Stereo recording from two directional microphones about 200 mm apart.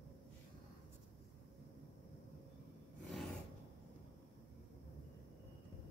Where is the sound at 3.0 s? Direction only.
Centre (ahead or behind).